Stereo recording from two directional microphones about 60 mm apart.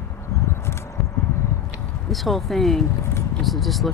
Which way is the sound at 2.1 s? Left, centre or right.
Centre.